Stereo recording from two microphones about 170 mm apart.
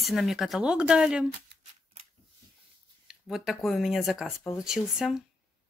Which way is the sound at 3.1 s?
5° right (ahead or behind).